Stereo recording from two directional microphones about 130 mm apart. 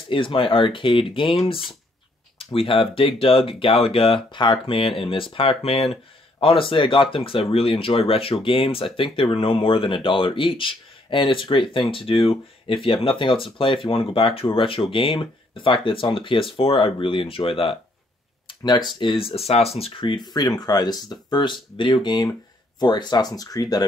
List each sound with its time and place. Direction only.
0.1 s speech: 40° left (ahead or behind)